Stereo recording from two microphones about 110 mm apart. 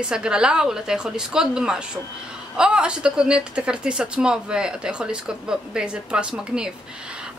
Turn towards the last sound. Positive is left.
turn(degrees=-10)  # may be behind; listen again after turning